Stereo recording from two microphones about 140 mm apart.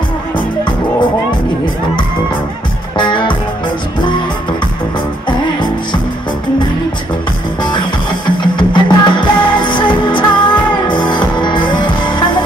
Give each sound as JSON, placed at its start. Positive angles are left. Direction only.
{"t": 3.0, "sound": "music", "side_deg": 35}
{"t": 8.5, "sound": "music", "side_deg": 35}